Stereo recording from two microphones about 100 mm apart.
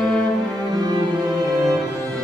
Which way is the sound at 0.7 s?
40° right (ahead or behind).